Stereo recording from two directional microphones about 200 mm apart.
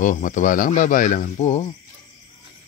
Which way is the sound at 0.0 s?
40° left (ahead or behind).